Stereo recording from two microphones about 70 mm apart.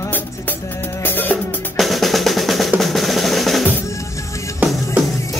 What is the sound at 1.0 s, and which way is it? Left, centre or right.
Music, left.